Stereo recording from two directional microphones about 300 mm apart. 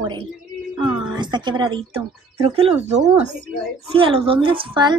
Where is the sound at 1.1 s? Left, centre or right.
Centre.